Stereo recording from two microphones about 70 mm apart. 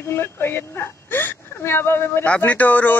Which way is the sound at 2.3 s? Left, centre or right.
Left.